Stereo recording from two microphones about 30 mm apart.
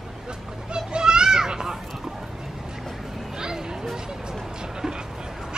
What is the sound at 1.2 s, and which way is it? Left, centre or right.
Children playing, right.